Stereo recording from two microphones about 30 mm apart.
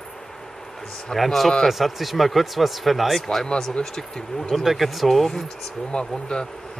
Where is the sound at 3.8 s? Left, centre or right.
Centre.